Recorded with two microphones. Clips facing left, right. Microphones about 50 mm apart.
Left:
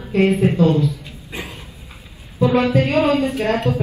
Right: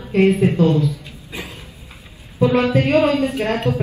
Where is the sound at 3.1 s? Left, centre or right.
Left.